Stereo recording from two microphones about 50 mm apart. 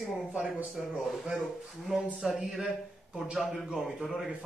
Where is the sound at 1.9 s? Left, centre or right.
Centre.